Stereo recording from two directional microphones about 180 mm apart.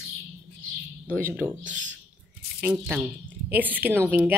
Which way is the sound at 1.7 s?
90° right.